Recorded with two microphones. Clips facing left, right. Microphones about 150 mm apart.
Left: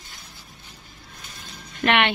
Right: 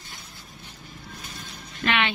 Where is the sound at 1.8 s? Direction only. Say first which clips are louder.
Left 4 dB; 65° left (ahead or behind).